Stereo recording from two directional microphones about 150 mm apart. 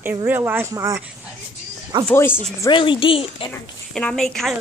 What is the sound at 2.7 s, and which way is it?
Speech, 35° left (ahead or behind).